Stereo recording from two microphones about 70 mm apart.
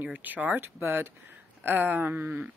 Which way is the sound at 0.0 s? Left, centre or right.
Right.